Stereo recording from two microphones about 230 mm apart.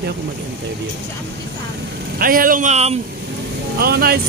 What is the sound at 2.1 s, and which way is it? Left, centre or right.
Speech, right.